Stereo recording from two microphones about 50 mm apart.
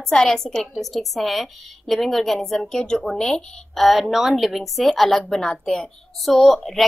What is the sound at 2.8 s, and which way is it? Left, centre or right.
A woman's voice, centre.